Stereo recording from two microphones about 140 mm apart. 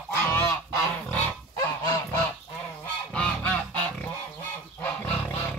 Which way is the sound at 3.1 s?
10° left (ahead or behind).